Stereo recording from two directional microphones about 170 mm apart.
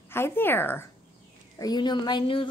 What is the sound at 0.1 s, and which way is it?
Speech, 15° left (ahead or behind).